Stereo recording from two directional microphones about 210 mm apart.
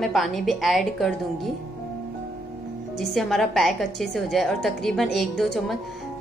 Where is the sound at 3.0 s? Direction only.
Centre (ahead or behind).